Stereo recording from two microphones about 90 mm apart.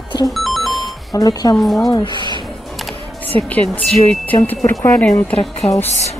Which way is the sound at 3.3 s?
15° left (ahead or behind).